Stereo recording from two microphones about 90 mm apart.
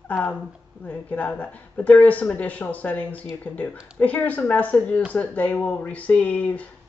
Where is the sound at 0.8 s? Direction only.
15° left (ahead or behind).